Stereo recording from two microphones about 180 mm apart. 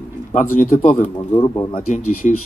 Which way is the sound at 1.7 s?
45° left (ahead or behind).